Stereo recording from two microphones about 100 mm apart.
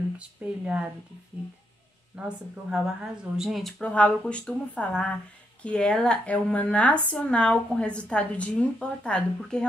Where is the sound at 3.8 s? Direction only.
10° left (ahead or behind).